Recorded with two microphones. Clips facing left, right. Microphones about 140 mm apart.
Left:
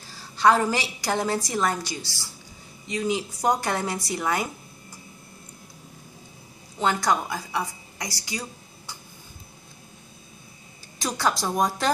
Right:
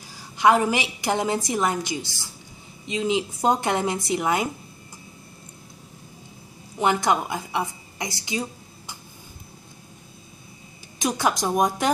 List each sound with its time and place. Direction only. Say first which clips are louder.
0.1 s a woman's voice: right 1 dB; 15° right (ahead or behind)
6.8 s a woman's voice: right 2 dB; 20° right (ahead or behind)
11.0 s a woman's voice: right 2 dB; 20° right (ahead or behind)